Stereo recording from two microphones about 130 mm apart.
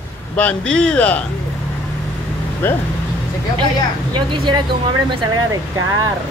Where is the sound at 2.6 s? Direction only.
15° left (ahead or behind).